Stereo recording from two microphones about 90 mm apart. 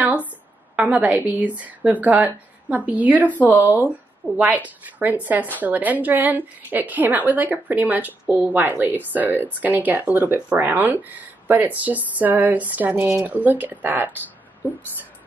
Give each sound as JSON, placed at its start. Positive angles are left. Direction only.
{"t": 0.7, "sound": "a woman's voice", "side_deg": -15}